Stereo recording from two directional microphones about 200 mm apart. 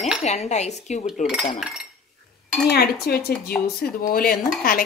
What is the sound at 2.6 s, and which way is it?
Speech, 50° left (ahead or behind).